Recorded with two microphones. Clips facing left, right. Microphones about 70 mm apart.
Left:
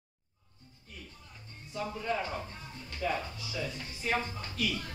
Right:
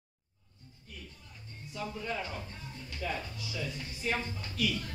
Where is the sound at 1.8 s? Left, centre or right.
Left.